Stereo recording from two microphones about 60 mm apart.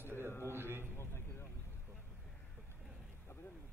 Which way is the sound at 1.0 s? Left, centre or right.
Left.